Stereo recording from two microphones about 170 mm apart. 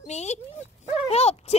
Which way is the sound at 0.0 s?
40° left (ahead or behind).